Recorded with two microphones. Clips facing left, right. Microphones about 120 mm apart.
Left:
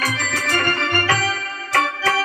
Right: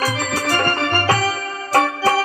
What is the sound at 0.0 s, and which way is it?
Music, 35° right (ahead or behind).